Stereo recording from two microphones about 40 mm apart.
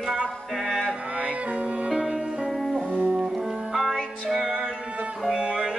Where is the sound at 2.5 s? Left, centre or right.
Centre.